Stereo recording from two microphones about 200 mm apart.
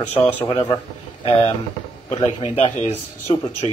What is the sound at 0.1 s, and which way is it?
Speech, 10° left (ahead or behind).